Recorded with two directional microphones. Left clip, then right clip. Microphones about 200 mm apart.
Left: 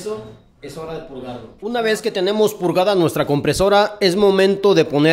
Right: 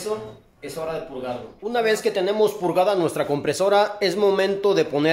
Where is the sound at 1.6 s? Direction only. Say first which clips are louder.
Left 2 dB; 30° left (ahead or behind).